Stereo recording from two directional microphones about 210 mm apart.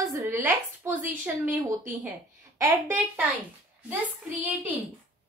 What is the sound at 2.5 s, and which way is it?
Speech, 15° right (ahead or behind).